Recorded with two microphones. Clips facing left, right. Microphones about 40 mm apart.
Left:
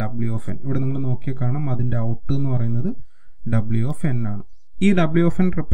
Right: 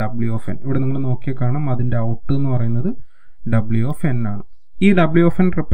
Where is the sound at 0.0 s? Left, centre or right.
Right.